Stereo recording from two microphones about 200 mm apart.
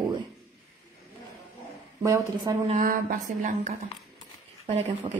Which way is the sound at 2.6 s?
35° right (ahead or behind).